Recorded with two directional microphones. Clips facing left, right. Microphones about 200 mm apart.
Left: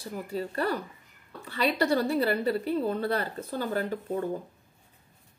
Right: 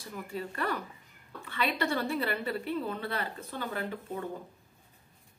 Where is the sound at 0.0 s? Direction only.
35° left (ahead or behind).